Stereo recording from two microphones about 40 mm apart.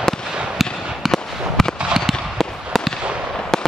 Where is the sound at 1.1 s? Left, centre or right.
Centre.